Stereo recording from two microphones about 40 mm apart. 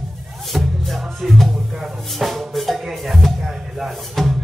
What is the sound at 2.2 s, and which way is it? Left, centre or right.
Music, centre.